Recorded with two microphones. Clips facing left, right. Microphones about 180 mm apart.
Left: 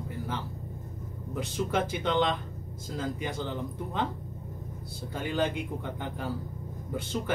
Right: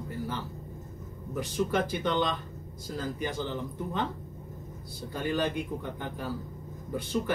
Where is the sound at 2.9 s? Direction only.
20° left (ahead or behind).